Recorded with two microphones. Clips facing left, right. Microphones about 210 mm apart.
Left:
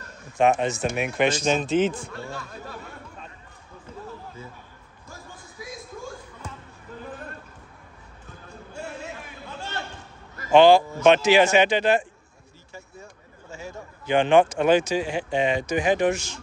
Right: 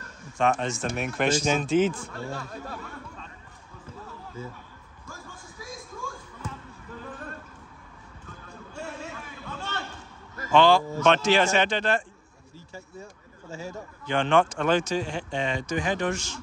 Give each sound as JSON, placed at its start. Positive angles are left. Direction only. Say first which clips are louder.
{"t": 0.4, "sound": "speech", "louder": "left 4 dB", "side_deg": 10}
{"t": 10.5, "sound": "speech", "louder": "left 5 dB", "side_deg": 15}
{"t": 11.1, "sound": "speech", "louder": "left 4 dB", "side_deg": 5}
{"t": 14.0, "sound": "speech", "louder": "left 5 dB", "side_deg": 10}
{"t": 15.2, "sound": "speech", "louder": "left 6 dB", "side_deg": 15}